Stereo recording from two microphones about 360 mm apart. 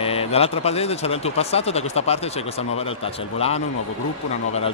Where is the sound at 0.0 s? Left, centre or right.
Centre.